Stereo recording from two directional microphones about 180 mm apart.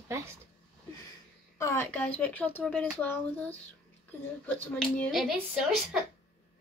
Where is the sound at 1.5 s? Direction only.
15° left (ahead or behind).